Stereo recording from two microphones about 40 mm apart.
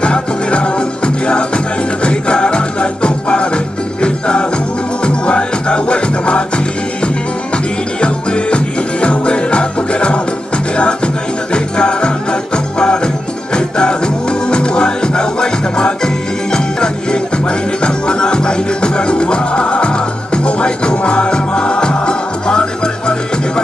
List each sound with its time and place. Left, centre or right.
0.0 s music: left
7.5 s music: left
11.5 s music: left